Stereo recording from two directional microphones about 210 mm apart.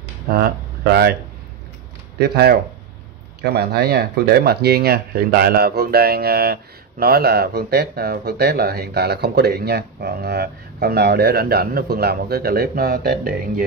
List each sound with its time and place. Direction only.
0.3 s speech: 45° right (ahead or behind)
2.1 s speech: 50° right (ahead or behind)